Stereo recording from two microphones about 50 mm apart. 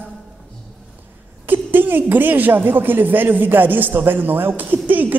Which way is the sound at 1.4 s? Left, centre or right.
Right.